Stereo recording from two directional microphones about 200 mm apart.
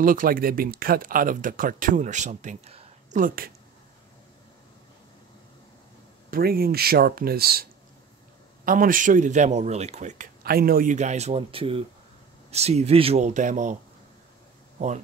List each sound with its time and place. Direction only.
0.0 s speech: 45° right (ahead or behind)
6.3 s speech: 50° right (ahead or behind)
8.6 s a man's voice: 45° right (ahead or behind)